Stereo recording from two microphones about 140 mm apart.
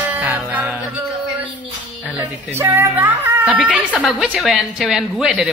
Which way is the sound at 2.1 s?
15° right (ahead or behind).